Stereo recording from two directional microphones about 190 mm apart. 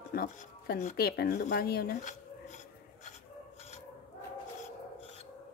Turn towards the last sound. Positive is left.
turn(degrees=30)  # may be behind; listen again after turning